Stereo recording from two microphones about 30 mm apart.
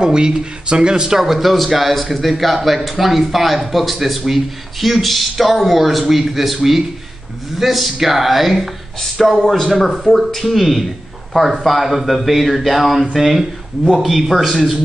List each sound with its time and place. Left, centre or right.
0.0 s speech: right
1.2 s speech: centre
9.2 s a man's voice: centre
9.7 s speech: centre
14.3 s speech: centre